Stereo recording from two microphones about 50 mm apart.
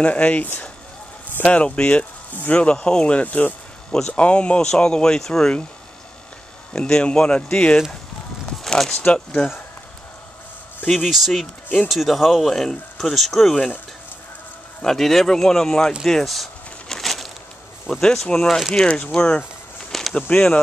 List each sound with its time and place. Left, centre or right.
0.0 s speech: left; by 5.5 s centre
6.7 s speech: centre
8.6 s speech: centre
9.0 s speech: left
11.1 s speech: centre
14.8 s speech: centre
16.9 s a sound: centre
17.8 s speech: centre
19.9 s a sound: centre
20.2 s speech: left